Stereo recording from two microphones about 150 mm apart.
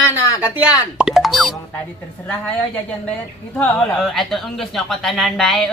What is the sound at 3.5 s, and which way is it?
Speech, 5° left (ahead or behind).